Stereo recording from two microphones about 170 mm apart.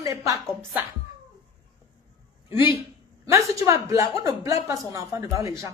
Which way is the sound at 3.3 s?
20° right (ahead or behind).